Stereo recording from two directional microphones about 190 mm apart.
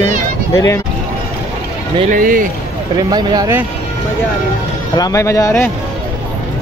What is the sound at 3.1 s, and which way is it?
Speech, 20° right (ahead or behind).